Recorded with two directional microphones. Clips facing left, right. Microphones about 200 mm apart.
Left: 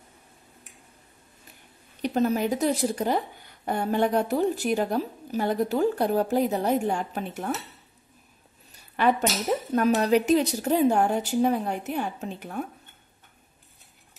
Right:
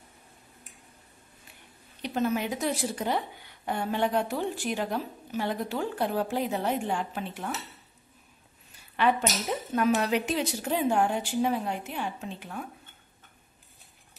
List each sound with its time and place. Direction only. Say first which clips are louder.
2.0 s speech: left 4 dB; 40° left (ahead or behind)
9.8 s speech: left 4 dB; 40° left (ahead or behind)